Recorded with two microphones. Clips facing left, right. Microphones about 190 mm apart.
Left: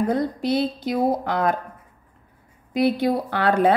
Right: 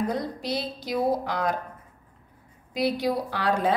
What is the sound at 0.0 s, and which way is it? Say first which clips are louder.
A woman's voice: left 6 dB; 55° left (ahead or behind).